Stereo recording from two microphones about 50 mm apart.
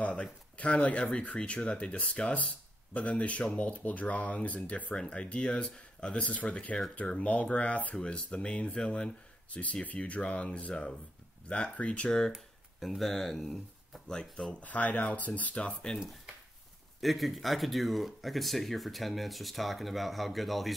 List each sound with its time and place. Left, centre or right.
0.0 s speech: left
4.9 s speech: centre
12.4 s speech: centre
14.0 s speech: centre
14.5 s speech: left
17.0 s speech: centre